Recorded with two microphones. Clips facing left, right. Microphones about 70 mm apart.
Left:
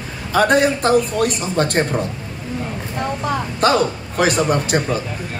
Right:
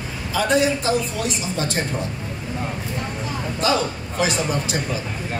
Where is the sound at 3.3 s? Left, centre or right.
Left.